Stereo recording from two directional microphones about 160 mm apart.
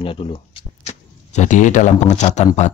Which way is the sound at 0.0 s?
35° left (ahead or behind).